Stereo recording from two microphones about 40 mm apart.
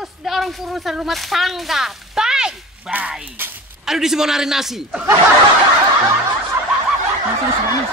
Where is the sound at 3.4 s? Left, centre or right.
Right.